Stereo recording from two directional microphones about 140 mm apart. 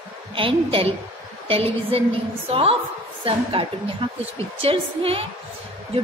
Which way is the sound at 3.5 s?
40° right (ahead or behind).